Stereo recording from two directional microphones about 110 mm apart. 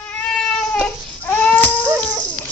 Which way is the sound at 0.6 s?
5° left (ahead or behind).